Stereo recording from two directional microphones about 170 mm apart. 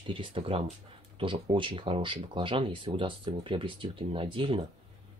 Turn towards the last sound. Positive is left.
turn(degrees=-35)  # may be behind; listen again after turning